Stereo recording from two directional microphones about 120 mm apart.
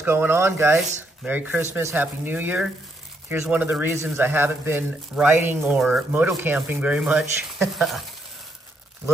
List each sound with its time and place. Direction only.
0.0 s speech: 20° right (ahead or behind)
5.8 s speech: centre (ahead or behind)
6.1 s speech: 15° right (ahead or behind); by 8.0 s centre (ahead or behind)